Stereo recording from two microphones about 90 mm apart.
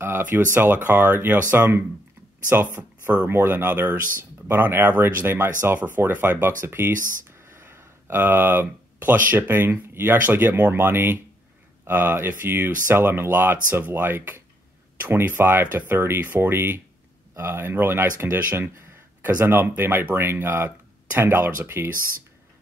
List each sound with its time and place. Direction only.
0.0 s speech: 25° right (ahead or behind)